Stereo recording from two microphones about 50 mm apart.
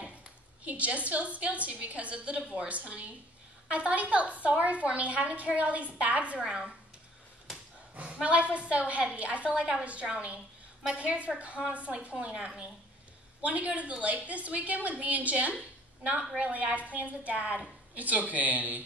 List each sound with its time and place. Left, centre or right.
0.7 s a woman's voice: right
6.4 s speech: centre
7.9 s a woman's voice: right
13.4 s a woman's voice: right